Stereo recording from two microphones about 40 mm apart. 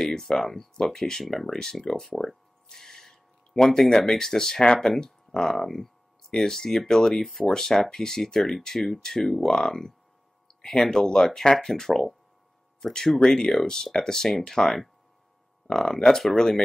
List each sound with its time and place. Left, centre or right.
0.1 s speech: centre
13.2 s speech: centre